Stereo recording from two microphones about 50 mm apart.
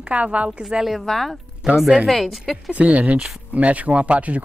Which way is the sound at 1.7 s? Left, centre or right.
Centre.